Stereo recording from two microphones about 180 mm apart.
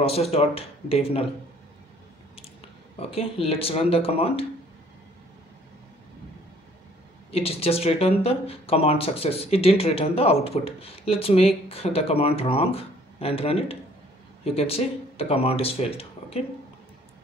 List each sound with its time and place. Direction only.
0.0 s speech: 35° left (ahead or behind)
3.0 s speech: 35° left (ahead or behind)
7.2 s speech: 35° left (ahead or behind)